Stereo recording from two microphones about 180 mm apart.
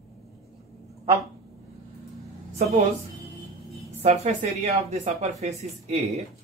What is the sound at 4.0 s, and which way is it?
Speech, 35° right (ahead or behind).